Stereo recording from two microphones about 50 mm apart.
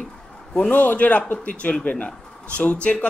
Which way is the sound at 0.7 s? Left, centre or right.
Left.